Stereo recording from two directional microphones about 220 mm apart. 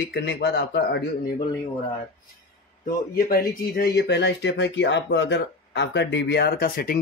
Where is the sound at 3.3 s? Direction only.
45° left (ahead or behind).